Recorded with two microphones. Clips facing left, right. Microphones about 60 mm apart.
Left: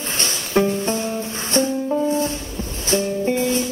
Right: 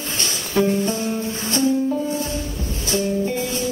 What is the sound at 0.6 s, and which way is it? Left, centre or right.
Music, left.